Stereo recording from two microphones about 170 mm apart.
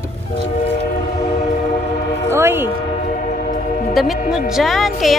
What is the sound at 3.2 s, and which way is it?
Train, 55° left (ahead or behind).